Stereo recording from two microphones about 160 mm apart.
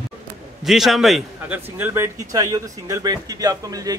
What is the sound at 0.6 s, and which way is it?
Speech, centre (ahead or behind).